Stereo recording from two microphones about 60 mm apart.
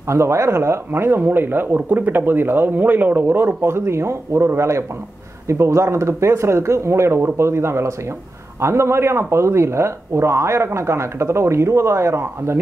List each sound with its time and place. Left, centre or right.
0.1 s speech: right